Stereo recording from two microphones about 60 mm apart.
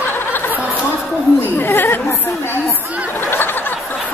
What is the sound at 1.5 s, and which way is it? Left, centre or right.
Chatter, left.